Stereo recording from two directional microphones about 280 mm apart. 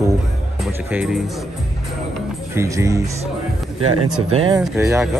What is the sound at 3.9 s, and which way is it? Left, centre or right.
Speech, right.